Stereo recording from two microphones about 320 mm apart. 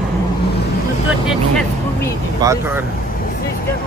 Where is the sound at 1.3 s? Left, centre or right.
Centre.